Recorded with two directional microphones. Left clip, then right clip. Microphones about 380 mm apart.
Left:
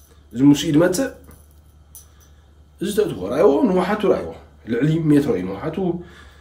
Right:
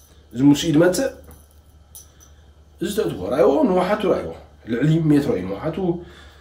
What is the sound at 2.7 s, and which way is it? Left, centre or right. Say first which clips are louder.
A man's voice: left 2 dB; centre.